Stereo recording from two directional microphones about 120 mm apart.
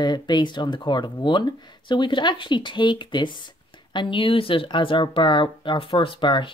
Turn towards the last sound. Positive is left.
turn(degrees=45)  # may be behind; listen again after turning